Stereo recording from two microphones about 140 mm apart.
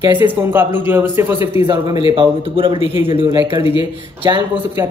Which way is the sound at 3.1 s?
40° right (ahead or behind).